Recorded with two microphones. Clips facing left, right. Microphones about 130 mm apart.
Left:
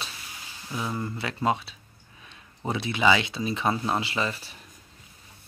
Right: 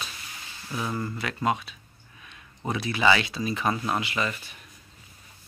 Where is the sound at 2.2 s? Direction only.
25° left (ahead or behind).